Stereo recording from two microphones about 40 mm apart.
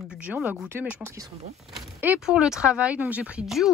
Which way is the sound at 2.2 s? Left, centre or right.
Centre.